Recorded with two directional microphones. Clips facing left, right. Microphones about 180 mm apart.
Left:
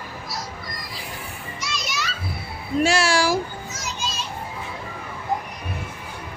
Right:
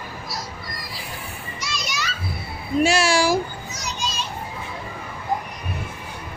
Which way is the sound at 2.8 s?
15° right (ahead or behind).